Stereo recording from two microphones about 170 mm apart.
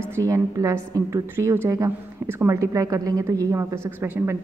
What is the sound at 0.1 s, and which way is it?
A woman's voice, 20° right (ahead or behind).